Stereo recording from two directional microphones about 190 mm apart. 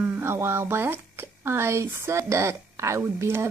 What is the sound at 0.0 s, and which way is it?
A woman's voice, 10° right (ahead or behind).